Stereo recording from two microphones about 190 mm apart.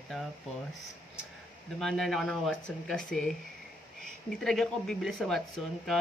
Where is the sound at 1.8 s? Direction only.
Centre (ahead or behind).